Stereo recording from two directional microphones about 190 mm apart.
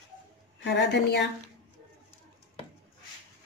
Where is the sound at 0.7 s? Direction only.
65° left (ahead or behind).